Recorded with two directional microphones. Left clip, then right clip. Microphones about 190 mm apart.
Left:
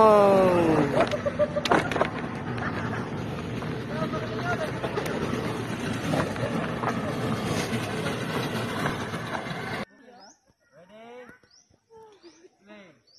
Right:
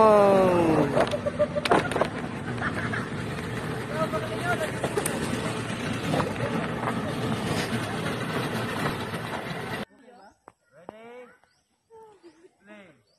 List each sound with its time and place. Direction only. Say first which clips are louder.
0.0 s a sound: even; centre (ahead or behind)
2.1 s vehicle: even; 10° right (ahead or behind); by 4.6 s 30° right (ahead or behind)
4.6 s a sound: right 1 dB; 45° right (ahead or behind)
4.9 s vehicle: even; 70° right (ahead or behind); by 5.9 s 40° right (ahead or behind)
5.9 s boat: even; 25° right (ahead or behind)
6.2 s vehicle: even; 5° right (ahead or behind)
8.4 s vehicle: even; 5° right (ahead or behind)
9.4 s music: even; 5° right (ahead or behind)
11.0 s bird: left 4 dB; centre (ahead or behind)